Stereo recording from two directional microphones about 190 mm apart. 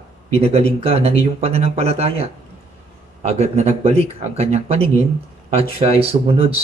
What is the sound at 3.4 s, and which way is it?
Speech, 35° right (ahead or behind).